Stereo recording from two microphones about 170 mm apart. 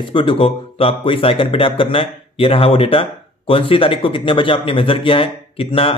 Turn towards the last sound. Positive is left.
turn(degrees=35)  # may be behind; listen again after turning